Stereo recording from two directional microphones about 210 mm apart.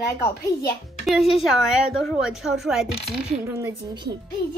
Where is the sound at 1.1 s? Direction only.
Centre (ahead or behind).